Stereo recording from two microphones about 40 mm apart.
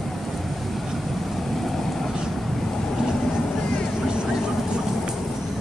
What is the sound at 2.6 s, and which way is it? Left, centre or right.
Boat, centre.